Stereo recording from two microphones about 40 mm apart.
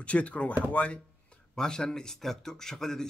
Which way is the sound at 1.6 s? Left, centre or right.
Centre.